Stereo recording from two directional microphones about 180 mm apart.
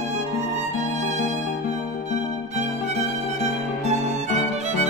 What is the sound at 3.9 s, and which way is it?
Violin, 40° right (ahead or behind).